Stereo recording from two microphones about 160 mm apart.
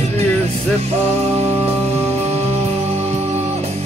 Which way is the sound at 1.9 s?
15° right (ahead or behind).